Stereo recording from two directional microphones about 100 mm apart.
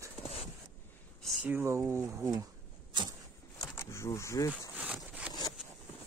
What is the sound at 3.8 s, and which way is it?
Speech, 30° left (ahead or behind).